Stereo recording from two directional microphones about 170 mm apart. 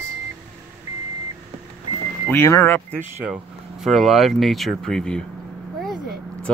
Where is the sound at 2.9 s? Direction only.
10° right (ahead or behind).